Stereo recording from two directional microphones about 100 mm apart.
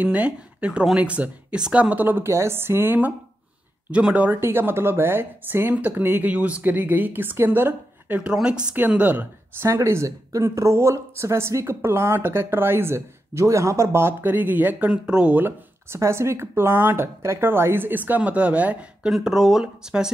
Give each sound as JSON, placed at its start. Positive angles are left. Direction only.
{"t": 0.0, "sound": "a woman's voice", "side_deg": -15}
{"t": 8.2, "sound": "speech", "side_deg": -10}
{"t": 9.7, "sound": "a woman's voice", "side_deg": -30}